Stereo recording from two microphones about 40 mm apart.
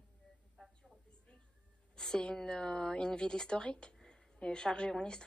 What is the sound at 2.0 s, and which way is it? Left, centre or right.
Speech, centre.